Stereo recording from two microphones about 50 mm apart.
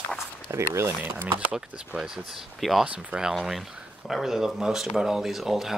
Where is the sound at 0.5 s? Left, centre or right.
Right.